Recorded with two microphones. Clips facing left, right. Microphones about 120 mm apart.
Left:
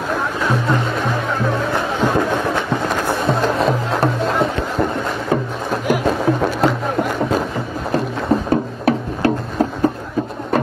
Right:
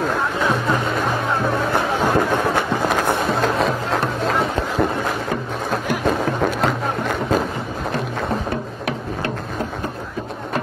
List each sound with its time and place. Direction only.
0.1 s music: centre (ahead or behind)
2.0 s a sound: 5° right (ahead or behind)
3.3 s music: centre (ahead or behind)
8.5 s music: 35° left (ahead or behind)